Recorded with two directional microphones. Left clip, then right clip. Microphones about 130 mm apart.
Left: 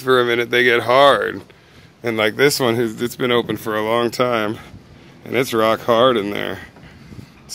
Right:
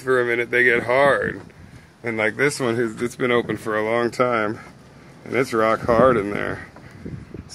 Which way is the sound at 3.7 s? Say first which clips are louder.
Left 2 dB; 40° left (ahead or behind).